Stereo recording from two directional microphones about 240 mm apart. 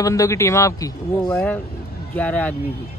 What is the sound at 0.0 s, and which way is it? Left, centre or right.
Speech, centre.